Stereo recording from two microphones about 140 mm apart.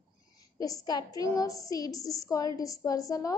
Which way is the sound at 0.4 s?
25° left (ahead or behind).